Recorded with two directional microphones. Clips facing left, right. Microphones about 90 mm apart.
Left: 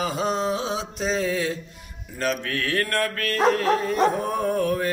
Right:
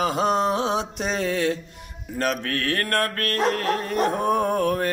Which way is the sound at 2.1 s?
50° right (ahead or behind).